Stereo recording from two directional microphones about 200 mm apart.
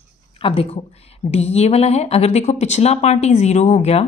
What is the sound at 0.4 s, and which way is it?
A woman's voice, 30° left (ahead or behind).